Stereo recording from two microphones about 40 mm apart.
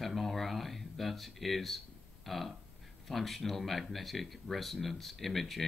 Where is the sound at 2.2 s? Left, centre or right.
Centre.